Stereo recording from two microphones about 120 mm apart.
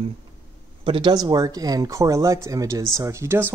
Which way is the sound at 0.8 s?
50° right (ahead or behind).